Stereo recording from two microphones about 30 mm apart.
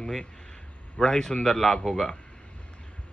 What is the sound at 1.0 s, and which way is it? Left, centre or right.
Speech, centre.